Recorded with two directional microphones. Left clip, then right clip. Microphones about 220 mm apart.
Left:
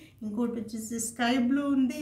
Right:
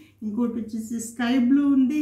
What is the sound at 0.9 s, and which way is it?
A woman's voice, 55° left (ahead or behind).